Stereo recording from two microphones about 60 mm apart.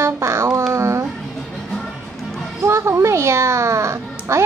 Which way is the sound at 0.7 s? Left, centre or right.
Right.